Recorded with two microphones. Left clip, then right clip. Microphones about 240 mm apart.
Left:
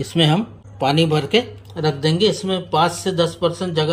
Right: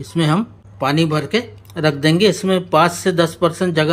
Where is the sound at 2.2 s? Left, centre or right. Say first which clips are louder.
Right 3 dB; centre.